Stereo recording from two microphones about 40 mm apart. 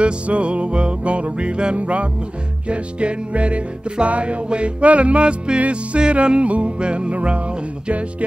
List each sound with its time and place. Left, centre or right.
0.0 s music: right